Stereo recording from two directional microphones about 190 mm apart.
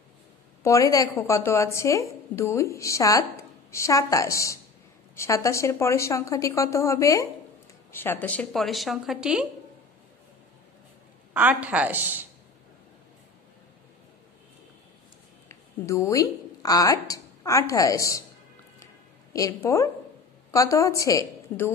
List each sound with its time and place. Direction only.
0.7 s a woman's voice: 15° left (ahead or behind); by 9.5 s 5° right (ahead or behind)
11.3 s a woman's voice: 10° right (ahead or behind)
15.4 s a woman's voice: 15° left (ahead or behind)
19.3 s a woman's voice: 15° left (ahead or behind)